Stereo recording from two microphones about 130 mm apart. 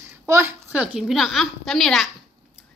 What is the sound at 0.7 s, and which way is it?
Speech, 10° right (ahead or behind).